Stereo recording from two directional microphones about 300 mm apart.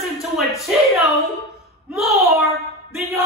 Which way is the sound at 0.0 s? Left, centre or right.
Centre.